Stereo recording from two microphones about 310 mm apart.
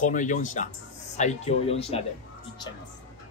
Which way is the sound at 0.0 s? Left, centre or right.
Left.